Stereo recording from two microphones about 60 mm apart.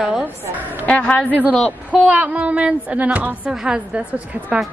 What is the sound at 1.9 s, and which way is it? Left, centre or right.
A woman's voice, centre.